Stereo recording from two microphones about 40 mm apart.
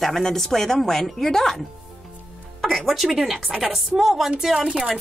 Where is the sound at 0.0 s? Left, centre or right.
Centre.